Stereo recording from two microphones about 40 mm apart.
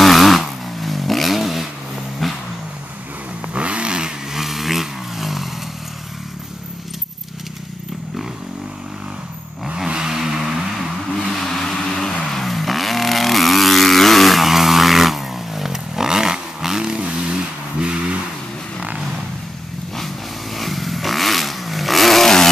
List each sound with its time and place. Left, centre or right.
0.0 s vehicle: centre
2.2 s a sound: centre
3.5 s vehicle: right
4.4 s vehicle: centre
9.8 s vehicle: centre
11.2 s vehicle: centre; by 17.9 s right
20.5 s a sound: centre